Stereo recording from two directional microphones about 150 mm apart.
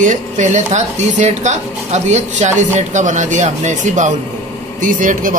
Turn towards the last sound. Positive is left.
turn(degrees=-65)  # may be behind; listen again after turning